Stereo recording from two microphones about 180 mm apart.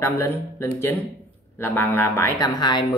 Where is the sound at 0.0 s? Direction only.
15° left (ahead or behind).